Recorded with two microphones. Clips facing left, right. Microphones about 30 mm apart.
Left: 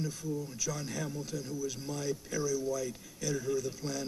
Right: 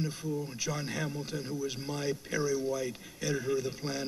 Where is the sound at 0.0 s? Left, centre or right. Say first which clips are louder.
Right 2 dB; right.